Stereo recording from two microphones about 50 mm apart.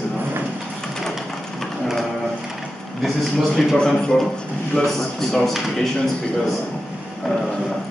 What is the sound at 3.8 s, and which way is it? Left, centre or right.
Speech, centre.